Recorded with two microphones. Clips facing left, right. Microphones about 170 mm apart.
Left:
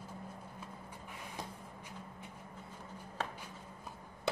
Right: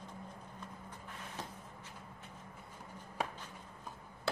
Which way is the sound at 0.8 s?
15° left (ahead or behind).